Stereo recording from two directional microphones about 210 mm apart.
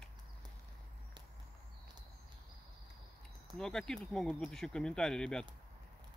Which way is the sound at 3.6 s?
5° left (ahead or behind).